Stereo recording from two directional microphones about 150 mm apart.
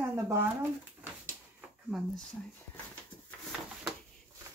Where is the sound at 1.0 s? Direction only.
15° right (ahead or behind).